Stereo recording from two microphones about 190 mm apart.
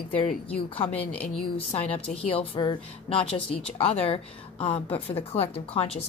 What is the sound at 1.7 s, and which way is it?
A woman's voice, 30° left (ahead or behind).